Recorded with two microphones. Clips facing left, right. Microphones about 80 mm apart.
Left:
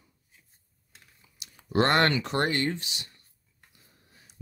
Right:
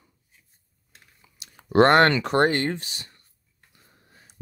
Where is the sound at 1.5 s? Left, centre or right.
Right.